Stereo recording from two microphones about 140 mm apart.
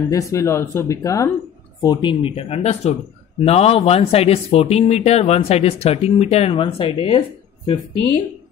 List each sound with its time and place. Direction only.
0.1 s speech: 20° left (ahead or behind); by 7.8 s 40° left (ahead or behind)